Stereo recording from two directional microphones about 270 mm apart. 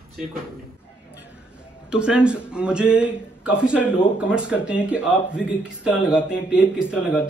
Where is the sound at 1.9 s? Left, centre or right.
Centre.